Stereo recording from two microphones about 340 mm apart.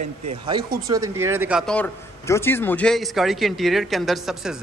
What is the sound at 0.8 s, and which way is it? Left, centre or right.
A man's voice, centre.